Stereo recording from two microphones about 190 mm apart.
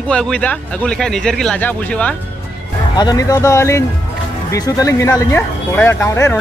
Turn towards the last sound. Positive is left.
turn(degrees=15)  # may be behind; listen again after turning